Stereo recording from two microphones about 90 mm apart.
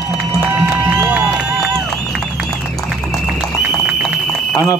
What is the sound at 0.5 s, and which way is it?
Music, 15° right (ahead or behind).